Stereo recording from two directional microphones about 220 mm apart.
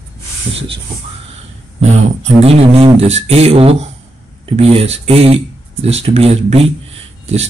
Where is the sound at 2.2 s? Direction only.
30° right (ahead or behind).